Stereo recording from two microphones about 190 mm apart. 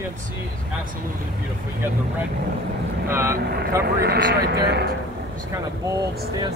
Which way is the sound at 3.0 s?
15° right (ahead or behind).